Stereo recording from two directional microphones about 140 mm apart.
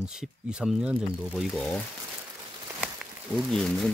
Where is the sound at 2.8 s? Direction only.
5° right (ahead or behind).